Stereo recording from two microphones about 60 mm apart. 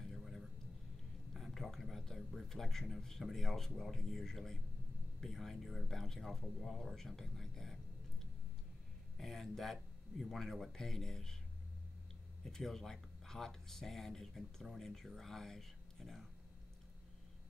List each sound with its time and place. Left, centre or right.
0.0 s a sound: centre
1.3 s speech: centre
12.4 s speech: centre